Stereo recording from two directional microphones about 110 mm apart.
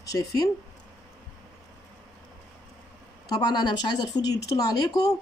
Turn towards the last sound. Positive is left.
turn(degrees=35)  # may be behind; listen again after turning